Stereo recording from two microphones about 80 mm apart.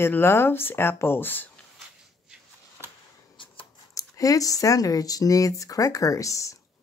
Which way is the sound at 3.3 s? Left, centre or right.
Left.